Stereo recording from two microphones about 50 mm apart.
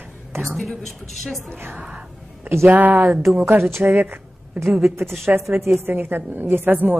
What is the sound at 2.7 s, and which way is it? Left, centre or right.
A woman's voice, right.